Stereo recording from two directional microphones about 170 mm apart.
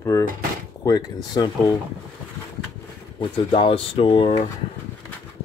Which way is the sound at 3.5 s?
30° left (ahead or behind).